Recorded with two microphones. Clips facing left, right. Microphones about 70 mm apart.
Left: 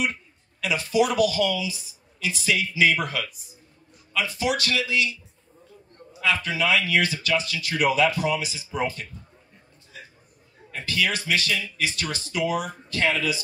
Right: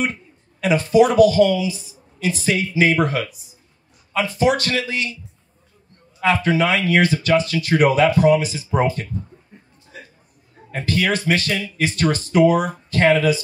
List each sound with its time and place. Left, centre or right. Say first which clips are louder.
0.0 s speech: right 4 dB; right
6.2 s speech: right 6 dB; right
10.7 s speech: right 6 dB; right